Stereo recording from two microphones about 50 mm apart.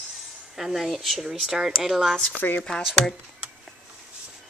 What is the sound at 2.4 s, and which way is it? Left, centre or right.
Speech, left.